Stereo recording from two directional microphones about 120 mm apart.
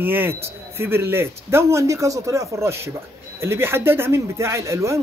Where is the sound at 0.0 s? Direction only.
15° right (ahead or behind).